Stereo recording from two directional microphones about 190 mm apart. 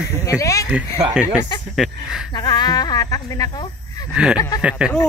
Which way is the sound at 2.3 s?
20° left (ahead or behind).